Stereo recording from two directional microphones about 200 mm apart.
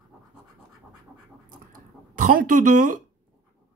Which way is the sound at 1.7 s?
40° right (ahead or behind).